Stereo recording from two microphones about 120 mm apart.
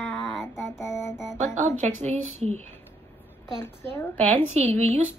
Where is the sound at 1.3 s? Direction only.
75° right (ahead or behind).